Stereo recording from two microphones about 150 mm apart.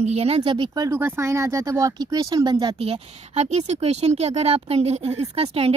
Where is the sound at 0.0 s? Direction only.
45° right (ahead or behind).